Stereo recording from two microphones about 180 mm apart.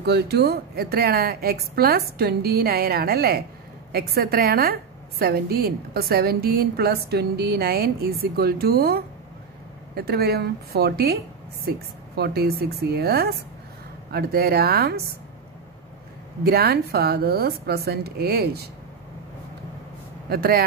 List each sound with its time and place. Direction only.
0.0 s a woman's voice: 65° right (ahead or behind)
12.2 s a woman's voice: 60° right (ahead or behind)
16.4 s a woman's voice: 60° right (ahead or behind)
20.2 s a woman's voice: 55° right (ahead or behind)